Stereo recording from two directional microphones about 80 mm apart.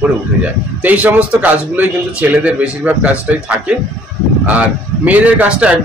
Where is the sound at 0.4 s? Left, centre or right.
Centre.